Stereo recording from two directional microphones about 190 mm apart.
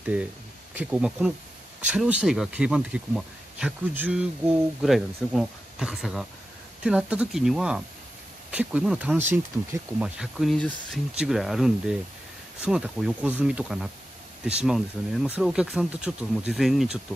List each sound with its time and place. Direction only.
0.0 s speech: 5° right (ahead or behind)